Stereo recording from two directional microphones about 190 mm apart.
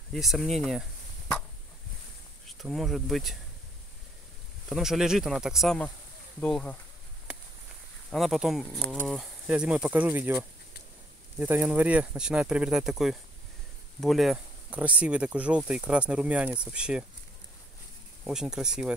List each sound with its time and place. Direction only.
0.1 s speech: centre (ahead or behind)
2.4 s speech: centre (ahead or behind)
4.6 s speech: centre (ahead or behind)
8.1 s speech: centre (ahead or behind)
8.8 s speech: 10° left (ahead or behind)
9.1 s speech: 5° right (ahead or behind)
18.2 s speech: 5° right (ahead or behind)